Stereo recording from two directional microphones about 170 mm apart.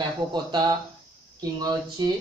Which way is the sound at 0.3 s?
25° right (ahead or behind).